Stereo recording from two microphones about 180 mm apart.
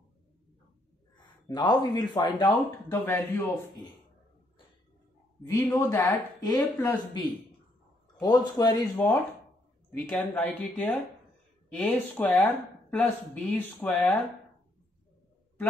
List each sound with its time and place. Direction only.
1.1 s speech: 25° left (ahead or behind)
2.4 s speech: 10° left (ahead or behind)
5.5 s speech: 15° left (ahead or behind)
8.2 s a man's voice: 20° left (ahead or behind)
8.9 s speech: 10° left (ahead or behind)